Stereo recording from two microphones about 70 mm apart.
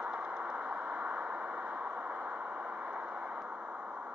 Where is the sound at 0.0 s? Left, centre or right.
Centre.